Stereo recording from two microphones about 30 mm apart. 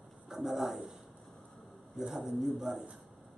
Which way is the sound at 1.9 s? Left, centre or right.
Centre.